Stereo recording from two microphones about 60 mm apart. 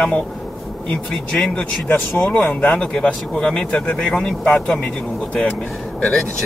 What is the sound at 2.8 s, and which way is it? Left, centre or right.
Speech, centre.